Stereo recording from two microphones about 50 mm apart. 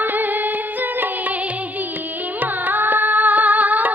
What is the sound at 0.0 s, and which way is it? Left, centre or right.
Music, right.